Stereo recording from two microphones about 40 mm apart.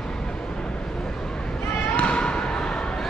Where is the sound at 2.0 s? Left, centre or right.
Left.